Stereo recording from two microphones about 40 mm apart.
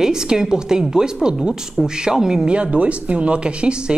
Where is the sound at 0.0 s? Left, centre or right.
Centre.